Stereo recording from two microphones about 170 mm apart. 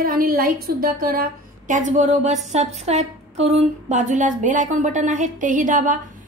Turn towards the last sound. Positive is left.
turn(degrees=-50)  # may be behind; listen again after turning